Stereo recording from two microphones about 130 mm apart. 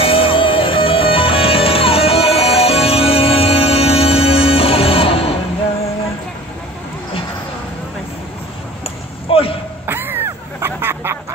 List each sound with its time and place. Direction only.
0.0 s music: 45° left (ahead or behind)
8.8 s a sound: 45° left (ahead or behind)
9.8 s quack: 15° right (ahead or behind)